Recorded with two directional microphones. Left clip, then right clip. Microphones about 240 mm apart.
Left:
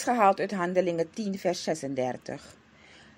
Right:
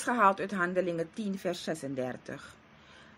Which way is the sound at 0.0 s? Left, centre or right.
Centre.